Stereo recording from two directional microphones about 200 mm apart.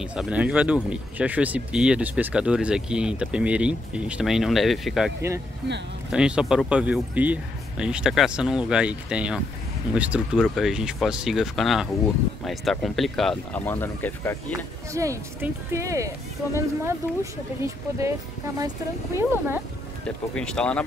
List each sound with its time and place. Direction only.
0.0 s speech: 5° right (ahead or behind)
6.1 s speech: 5° right (ahead or behind)
14.9 s speech: 15° right (ahead or behind)
19.1 s speech: 10° right (ahead or behind)
20.3 s speech: 5° left (ahead or behind)